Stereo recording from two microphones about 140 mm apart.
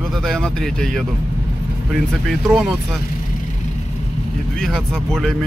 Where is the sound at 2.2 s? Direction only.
Centre (ahead or behind).